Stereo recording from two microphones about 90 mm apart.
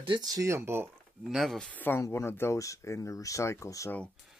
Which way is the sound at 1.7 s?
20° left (ahead or behind).